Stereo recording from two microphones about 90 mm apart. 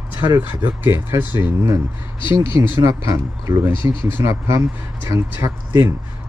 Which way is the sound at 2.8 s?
40° right (ahead or behind).